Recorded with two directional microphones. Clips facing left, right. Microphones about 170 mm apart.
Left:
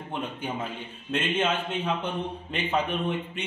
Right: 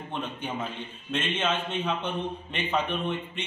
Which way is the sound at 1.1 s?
10° left (ahead or behind).